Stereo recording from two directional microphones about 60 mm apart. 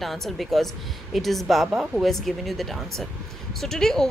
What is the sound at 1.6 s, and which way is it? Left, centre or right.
Speech, centre.